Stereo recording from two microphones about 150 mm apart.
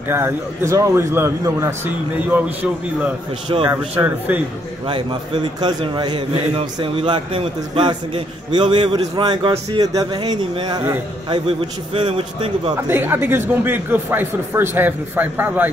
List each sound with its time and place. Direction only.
0.1 s speech: 15° right (ahead or behind)
3.9 s speech: 10° right (ahead or behind)
4.8 s a man's voice: 35° right (ahead or behind)
12.8 s speech: 15° right (ahead or behind)